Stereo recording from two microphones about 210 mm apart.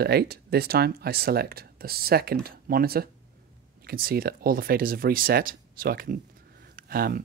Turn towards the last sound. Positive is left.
turn(degrees=-45)  # may be behind; listen again after turning